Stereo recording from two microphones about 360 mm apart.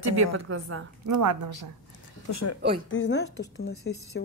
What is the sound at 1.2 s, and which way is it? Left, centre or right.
Speech, right.